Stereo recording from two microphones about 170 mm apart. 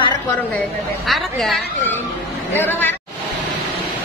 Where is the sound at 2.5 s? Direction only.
10° left (ahead or behind).